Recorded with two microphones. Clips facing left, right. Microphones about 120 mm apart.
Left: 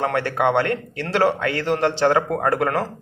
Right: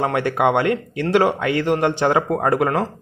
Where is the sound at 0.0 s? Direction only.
15° right (ahead or behind).